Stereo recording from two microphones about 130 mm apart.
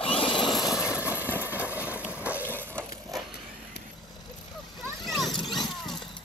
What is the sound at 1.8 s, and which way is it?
Boat, 10° right (ahead or behind).